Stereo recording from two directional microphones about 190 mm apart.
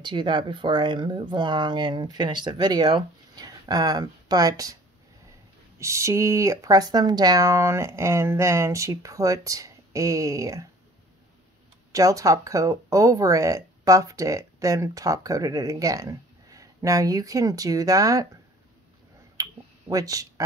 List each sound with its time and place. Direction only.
0.0 s speech: 25° right (ahead or behind)
5.8 s speech: 15° right (ahead or behind)
11.9 s speech: 15° right (ahead or behind)
19.3 s finger snapping: 20° right (ahead or behind)